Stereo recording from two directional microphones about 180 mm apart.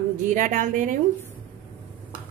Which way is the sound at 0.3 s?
45° right (ahead or behind).